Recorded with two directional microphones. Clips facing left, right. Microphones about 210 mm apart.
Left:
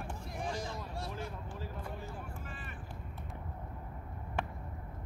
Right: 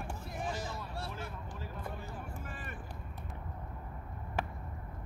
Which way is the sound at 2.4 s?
50° right (ahead or behind).